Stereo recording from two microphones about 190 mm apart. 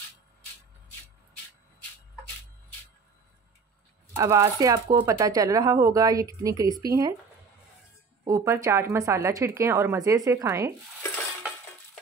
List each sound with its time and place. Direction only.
4.2 s speech: 20° right (ahead or behind)
8.3 s a woman's voice: 15° right (ahead or behind)